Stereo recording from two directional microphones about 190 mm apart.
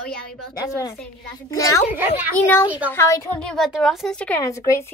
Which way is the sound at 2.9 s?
15° left (ahead or behind).